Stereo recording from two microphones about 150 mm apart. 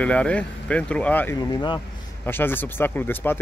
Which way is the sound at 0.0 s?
10° left (ahead or behind).